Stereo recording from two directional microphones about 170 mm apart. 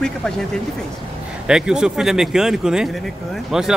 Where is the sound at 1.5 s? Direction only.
5° right (ahead or behind).